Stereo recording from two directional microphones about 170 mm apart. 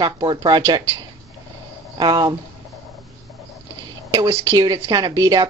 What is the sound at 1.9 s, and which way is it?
Speech, 25° right (ahead or behind).